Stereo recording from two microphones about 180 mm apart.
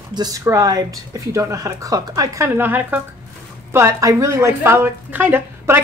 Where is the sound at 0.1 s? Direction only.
20° right (ahead or behind).